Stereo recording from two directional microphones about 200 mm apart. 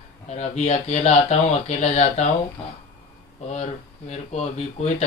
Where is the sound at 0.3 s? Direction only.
35° left (ahead or behind).